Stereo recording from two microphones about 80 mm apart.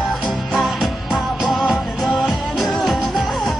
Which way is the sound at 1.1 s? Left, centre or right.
Centre.